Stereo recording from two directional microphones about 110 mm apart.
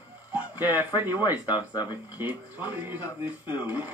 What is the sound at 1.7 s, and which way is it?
Speech, 40° left (ahead or behind).